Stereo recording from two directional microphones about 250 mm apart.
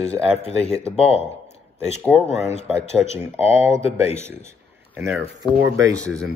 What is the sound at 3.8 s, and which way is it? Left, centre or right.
Speech, left.